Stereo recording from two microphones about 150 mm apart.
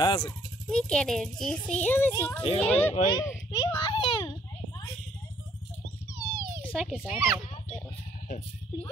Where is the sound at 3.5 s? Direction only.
25° left (ahead or behind).